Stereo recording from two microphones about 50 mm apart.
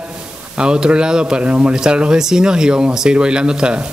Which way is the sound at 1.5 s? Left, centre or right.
Right.